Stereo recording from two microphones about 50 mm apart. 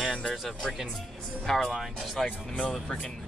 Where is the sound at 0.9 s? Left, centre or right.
Centre.